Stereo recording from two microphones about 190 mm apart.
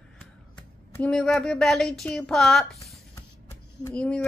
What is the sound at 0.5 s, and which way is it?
A woman's voice, 5° left (ahead or behind).